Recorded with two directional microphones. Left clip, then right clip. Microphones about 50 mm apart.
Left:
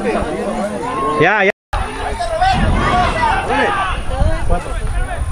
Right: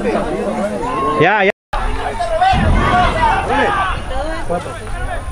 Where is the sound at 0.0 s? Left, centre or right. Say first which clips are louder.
Right 1 dB; left.